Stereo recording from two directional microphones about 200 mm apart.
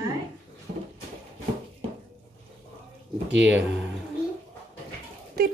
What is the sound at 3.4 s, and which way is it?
Speech, 5° right (ahead or behind).